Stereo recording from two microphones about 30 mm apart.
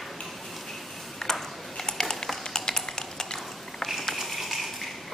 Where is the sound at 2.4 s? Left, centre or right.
Left.